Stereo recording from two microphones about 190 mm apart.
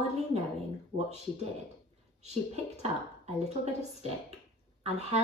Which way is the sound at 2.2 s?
35° right (ahead or behind).